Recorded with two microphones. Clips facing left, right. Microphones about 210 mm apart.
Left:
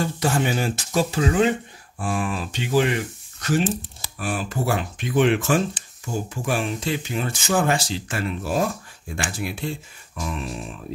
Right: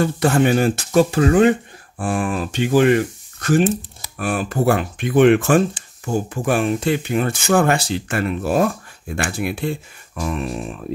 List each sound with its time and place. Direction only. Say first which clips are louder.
0.0 s speech: right 6 dB; 60° right (ahead or behind)